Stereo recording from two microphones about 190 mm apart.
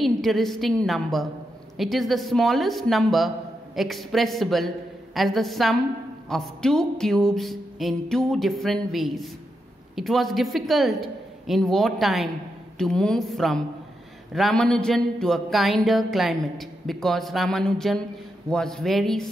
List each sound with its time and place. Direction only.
0.0 s speech: centre (ahead or behind)